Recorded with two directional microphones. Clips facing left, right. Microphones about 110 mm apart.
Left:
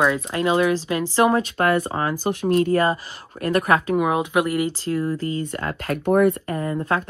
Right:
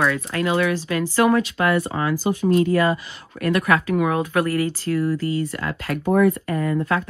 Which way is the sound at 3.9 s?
20° left (ahead or behind).